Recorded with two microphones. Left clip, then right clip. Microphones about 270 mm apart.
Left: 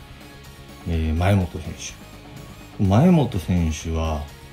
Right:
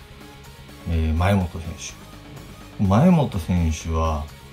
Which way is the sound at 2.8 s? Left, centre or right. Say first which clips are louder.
Even; right.